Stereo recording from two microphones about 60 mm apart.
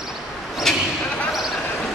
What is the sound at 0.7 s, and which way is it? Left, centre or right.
Basketball bounce, centre.